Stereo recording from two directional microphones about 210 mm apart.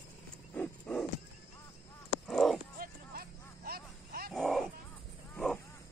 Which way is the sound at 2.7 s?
45° right (ahead or behind).